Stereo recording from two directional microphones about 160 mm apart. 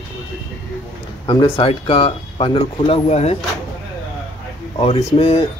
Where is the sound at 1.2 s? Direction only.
30° left (ahead or behind).